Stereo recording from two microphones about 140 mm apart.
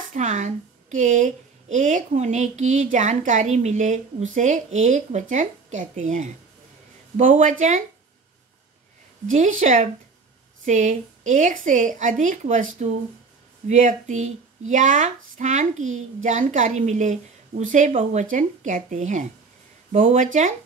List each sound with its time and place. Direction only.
0.1 s a woman's voice: 60° right (ahead or behind)
9.3 s a woman's voice: 60° right (ahead or behind)
13.7 s a woman's voice: 65° right (ahead or behind)